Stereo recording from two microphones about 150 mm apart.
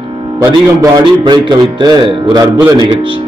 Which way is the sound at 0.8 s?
30° right (ahead or behind).